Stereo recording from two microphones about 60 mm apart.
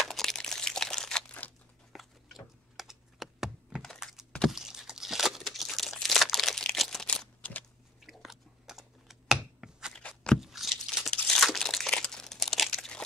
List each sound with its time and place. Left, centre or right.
0.0 s crumpling: centre
1.4 s crunch: left
1.9 s computer keyboard: centre
3.8 s computer keyboard: centre
4.5 s a sound: centre
5.4 s crumpling: centre
7.4 s biting: left
8.0 s computer keyboard: centre
9.9 s a sound: centre
10.4 s tearing: centre
11.1 s crumpling: centre